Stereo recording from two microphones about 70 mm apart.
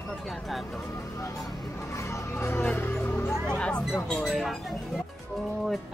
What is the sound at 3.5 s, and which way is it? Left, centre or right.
Speech, centre.